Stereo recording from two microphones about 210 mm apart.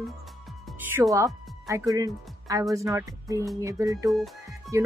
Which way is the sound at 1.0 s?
15° right (ahead or behind).